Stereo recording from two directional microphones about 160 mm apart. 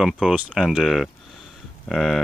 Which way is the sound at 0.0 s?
5° right (ahead or behind).